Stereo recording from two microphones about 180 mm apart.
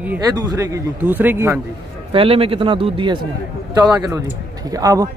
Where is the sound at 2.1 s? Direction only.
30° right (ahead or behind).